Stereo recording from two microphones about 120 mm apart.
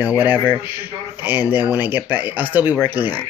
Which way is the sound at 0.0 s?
15° right (ahead or behind).